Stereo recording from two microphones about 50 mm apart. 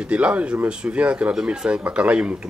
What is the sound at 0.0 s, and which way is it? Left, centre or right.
Speech, right.